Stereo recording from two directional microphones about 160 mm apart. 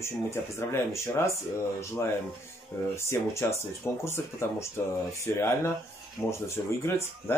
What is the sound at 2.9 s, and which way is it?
Speech, 15° left (ahead or behind).